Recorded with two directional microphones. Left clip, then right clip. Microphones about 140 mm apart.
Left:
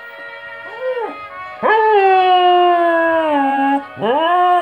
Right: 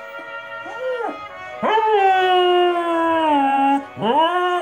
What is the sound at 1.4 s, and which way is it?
Howl, 25° left (ahead or behind).